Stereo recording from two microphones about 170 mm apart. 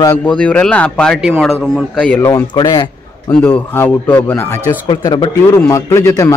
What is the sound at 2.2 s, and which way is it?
Speech, 20° left (ahead or behind).